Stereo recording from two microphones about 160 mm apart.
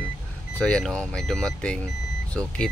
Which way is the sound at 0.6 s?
5° left (ahead or behind).